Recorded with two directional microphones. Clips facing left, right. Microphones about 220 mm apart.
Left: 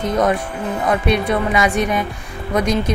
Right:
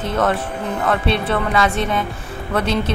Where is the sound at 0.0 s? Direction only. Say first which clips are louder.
Left 2 dB; 15° left (ahead or behind).